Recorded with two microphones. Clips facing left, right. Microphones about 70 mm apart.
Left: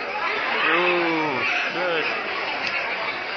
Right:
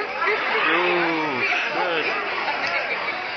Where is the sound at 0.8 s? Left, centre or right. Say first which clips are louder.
Even; right.